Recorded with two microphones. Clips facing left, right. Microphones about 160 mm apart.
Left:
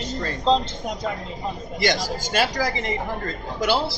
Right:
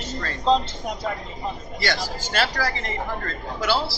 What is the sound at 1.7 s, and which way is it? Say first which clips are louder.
Speech: left 5 dB; 15° left (ahead or behind).